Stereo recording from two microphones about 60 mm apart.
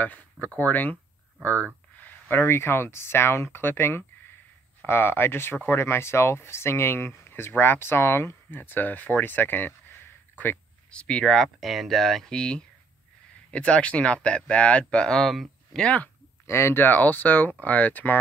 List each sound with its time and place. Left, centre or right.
0.0 s speech: left
10.9 s speech: centre
11.6 s speech: centre
12.3 s speech: centre
16.4 s speech: left
16.8 s speech: left